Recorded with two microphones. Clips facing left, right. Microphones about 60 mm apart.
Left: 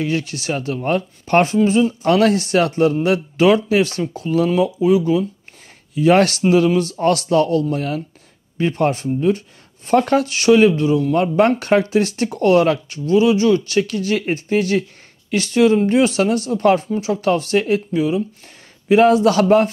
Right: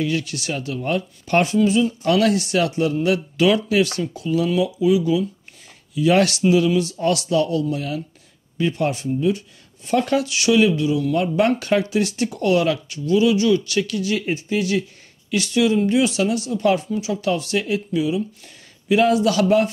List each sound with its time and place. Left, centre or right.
0.0 s speech: left